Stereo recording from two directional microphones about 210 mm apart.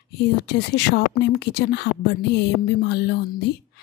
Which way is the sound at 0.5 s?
50° left (ahead or behind).